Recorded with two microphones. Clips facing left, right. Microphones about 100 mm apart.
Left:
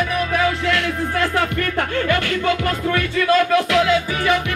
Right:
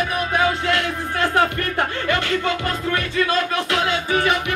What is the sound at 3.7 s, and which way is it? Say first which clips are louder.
Music: left 3 dB; 30° right (ahead or behind).